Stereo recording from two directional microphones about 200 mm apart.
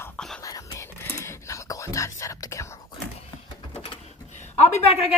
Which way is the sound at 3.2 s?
25° left (ahead or behind).